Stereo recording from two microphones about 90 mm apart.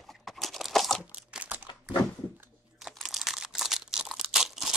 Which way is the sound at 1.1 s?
15° right (ahead or behind).